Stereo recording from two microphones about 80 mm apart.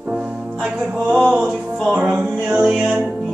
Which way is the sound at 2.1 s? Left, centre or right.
Centre.